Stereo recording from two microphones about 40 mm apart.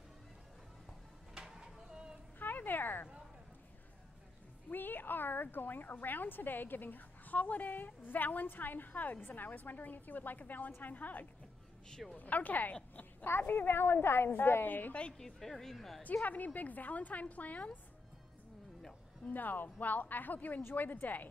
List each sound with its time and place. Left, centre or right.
1.3 s a sound: centre
2.3 s a sound: left
4.6 s speech: left
13.4 s a woman's voice: left
15.1 s speech: centre
16.3 s a woman's voice: left
19.2 s speech: left